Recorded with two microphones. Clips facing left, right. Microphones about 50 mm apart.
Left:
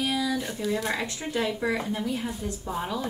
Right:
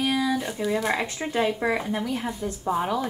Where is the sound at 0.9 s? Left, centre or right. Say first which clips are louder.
Right 3 dB; right.